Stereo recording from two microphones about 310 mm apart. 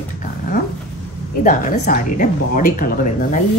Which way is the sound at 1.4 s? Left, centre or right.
Left.